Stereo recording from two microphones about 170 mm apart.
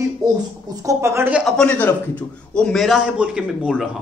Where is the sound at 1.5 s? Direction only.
10° left (ahead or behind).